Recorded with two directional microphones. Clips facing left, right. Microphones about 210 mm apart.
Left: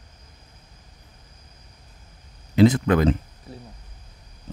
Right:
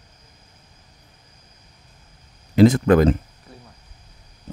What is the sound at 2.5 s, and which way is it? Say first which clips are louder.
Speech: right 3 dB; 50° right (ahead or behind).